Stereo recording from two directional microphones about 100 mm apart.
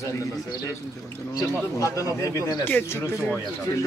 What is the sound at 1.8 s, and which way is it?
Speech, 35° left (ahead or behind).